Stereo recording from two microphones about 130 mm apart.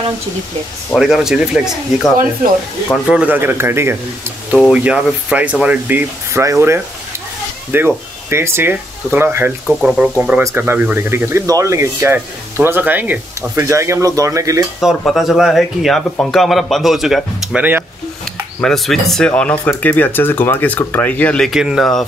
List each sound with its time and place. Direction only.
0.9 s speech: 5° right (ahead or behind); by 4.0 s 20° right (ahead or behind)
4.5 s speech: 5° right (ahead or behind)
9.8 s speech: 5° right (ahead or behind)
10.4 s speech: 15° right (ahead or behind)
14.8 s speech: centre (ahead or behind)
21.5 s speech: centre (ahead or behind)